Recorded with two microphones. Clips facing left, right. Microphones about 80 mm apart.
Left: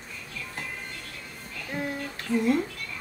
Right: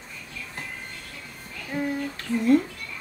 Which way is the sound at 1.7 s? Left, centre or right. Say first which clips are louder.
Right 4 dB; centre.